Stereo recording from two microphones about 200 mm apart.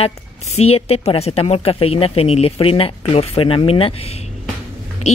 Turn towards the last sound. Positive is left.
turn(degrees=30)  # may be behind; listen again after turning